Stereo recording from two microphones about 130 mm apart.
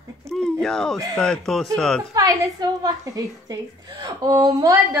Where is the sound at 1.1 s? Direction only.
5° left (ahead or behind).